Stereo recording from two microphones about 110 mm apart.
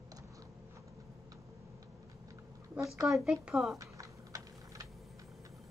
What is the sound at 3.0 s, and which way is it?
Speech, centre (ahead or behind).